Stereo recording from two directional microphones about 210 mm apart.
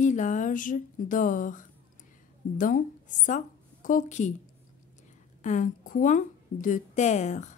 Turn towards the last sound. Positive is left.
turn(degrees=35)  # may be behind; listen again after turning